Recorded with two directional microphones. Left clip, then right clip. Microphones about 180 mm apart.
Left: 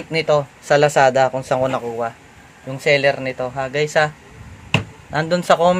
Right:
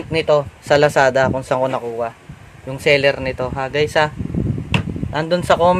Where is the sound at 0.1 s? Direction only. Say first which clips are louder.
Right 1 dB; 5° right (ahead or behind).